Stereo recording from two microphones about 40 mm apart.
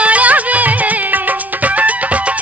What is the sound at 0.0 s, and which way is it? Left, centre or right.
Music, right.